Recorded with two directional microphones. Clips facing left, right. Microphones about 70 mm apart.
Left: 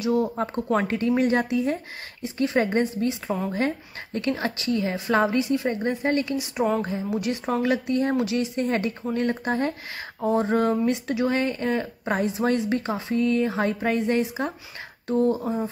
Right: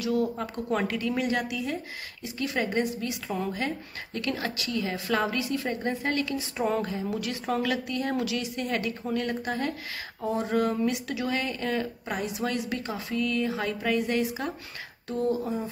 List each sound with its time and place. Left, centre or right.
0.0 s speech: left